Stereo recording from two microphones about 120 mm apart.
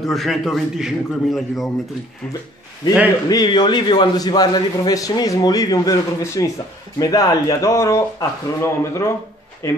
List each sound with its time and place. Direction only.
0.0 s a man's voice: centre (ahead or behind)
3.3 s a man's voice: 35° left (ahead or behind)